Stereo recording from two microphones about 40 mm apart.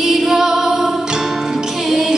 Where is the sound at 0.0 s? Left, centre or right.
Centre.